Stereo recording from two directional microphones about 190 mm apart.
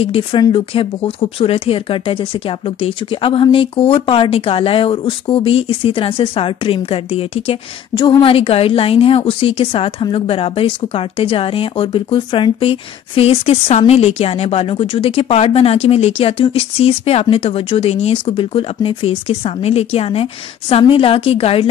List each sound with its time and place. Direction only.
0.0 s speech: 30° left (ahead or behind)